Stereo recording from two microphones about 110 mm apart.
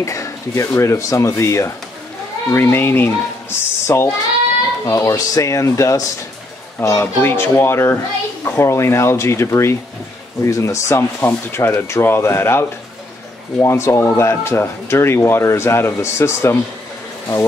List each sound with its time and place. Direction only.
0.0 s speech: 30° left (ahead or behind)